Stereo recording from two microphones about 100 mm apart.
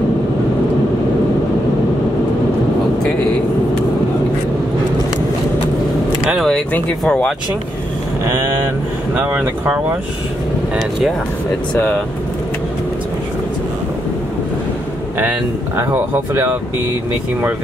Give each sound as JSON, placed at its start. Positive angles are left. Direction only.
{"t": 6.2, "sound": "a sound", "side_deg": -5}
{"t": 6.5, "sound": "speech", "side_deg": 10}
{"t": 9.1, "sound": "speech", "side_deg": -15}
{"t": 11.7, "sound": "speech", "side_deg": 10}
{"t": 15.8, "sound": "speech", "side_deg": -25}